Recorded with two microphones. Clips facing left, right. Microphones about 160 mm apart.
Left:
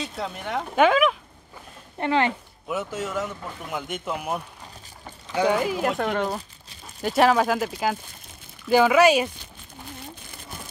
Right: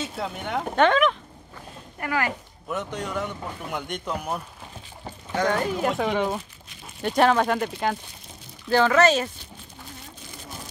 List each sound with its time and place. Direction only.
0.0 s speech: centre (ahead or behind)
2.0 s speech: 25° left (ahead or behind)
2.7 s speech: 5° left (ahead or behind)